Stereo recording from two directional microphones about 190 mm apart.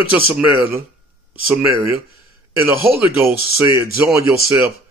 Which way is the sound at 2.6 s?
10° right (ahead or behind).